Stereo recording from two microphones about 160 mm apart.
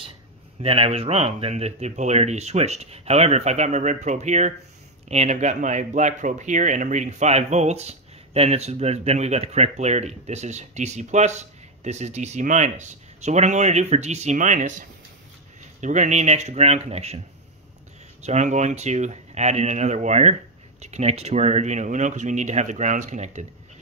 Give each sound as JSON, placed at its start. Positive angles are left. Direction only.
{"t": 0.6, "sound": "speech", "side_deg": -35}
{"t": 18.2, "sound": "speech", "side_deg": -45}